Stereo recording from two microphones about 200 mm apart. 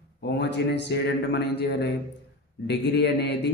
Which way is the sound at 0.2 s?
60° left (ahead or behind).